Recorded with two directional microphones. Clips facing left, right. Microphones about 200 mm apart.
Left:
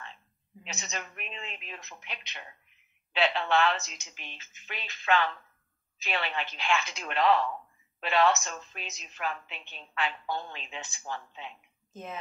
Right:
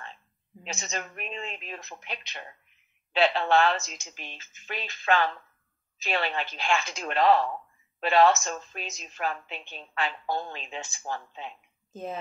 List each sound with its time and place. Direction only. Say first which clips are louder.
0.7 s a woman's voice: right 4 dB; 45° right (ahead or behind)